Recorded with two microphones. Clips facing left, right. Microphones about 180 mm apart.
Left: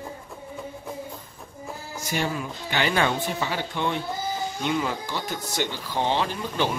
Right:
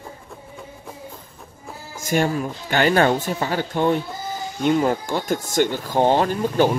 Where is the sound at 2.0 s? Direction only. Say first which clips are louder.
Right 7 dB; 50° right (ahead or behind).